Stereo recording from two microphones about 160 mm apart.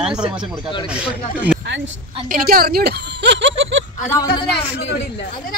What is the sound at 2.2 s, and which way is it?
A woman's voice, 65° right (ahead or behind).